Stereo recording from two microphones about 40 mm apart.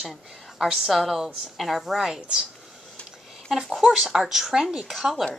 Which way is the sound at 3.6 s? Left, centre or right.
Centre.